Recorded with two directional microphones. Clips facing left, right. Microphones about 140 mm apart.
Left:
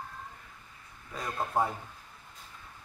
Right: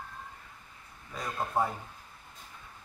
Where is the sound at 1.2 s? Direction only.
Centre (ahead or behind).